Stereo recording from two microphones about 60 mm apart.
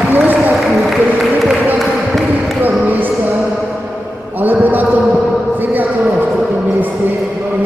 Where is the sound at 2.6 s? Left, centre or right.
Right.